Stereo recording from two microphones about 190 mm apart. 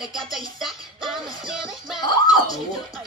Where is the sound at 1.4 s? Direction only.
Centre (ahead or behind).